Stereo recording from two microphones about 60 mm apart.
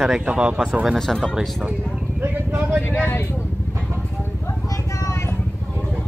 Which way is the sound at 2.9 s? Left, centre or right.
Left.